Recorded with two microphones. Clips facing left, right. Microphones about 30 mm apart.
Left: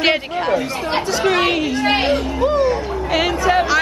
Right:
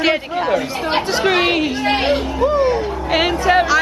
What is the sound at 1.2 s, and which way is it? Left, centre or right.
Speech, centre.